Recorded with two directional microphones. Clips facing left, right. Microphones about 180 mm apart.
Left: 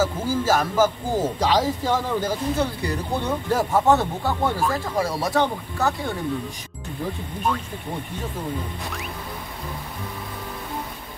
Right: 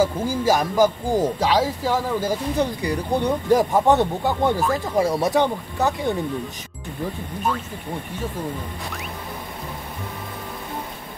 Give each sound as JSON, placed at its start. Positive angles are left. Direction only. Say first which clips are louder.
{"t": 0.0, "sound": "speech", "louder": "right 2 dB", "side_deg": -15}